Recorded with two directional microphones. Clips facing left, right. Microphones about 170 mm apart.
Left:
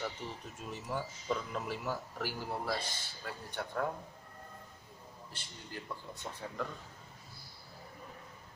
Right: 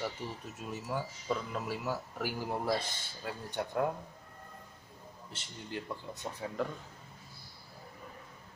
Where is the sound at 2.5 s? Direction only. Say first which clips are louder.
Right 6 dB; 20° right (ahead or behind).